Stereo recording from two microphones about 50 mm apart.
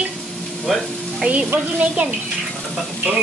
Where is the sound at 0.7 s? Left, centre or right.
Centre.